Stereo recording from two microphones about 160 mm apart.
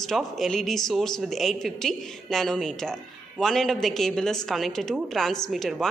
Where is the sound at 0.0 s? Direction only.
Centre (ahead or behind).